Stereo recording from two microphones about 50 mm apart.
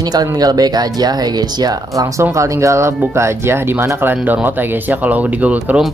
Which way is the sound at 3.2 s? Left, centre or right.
Right.